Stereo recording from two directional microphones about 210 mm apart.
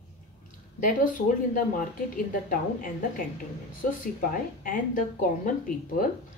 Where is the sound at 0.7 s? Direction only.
40° left (ahead or behind).